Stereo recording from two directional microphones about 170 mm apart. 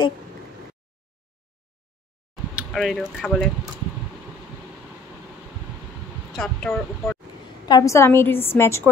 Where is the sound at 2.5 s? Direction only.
Centre (ahead or behind).